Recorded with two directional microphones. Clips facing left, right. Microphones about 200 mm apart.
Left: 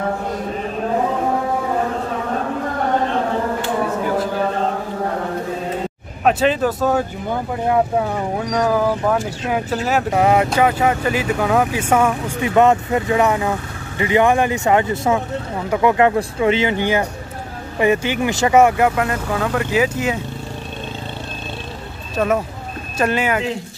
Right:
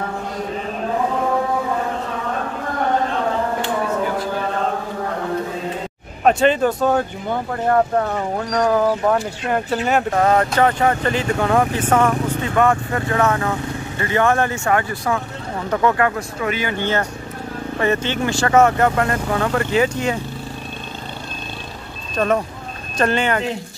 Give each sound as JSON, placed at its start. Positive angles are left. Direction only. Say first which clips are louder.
{"t": 6.2, "sound": "speech", "louder": "right 1 dB", "side_deg": 0}
{"t": 16.7, "sound": "speech", "louder": "left 2 dB", "side_deg": 10}
{"t": 22.1, "sound": "speech", "louder": "even", "side_deg": 5}